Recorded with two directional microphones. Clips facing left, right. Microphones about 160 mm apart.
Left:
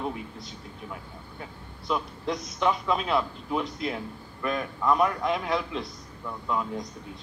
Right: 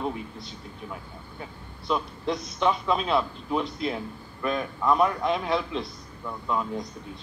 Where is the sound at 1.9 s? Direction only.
25° right (ahead or behind).